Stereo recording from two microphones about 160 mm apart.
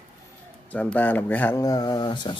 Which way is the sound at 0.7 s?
10° left (ahead or behind).